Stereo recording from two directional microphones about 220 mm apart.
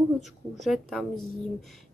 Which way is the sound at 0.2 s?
Centre (ahead or behind).